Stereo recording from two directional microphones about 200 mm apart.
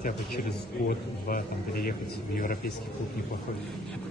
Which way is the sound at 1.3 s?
45° left (ahead or behind).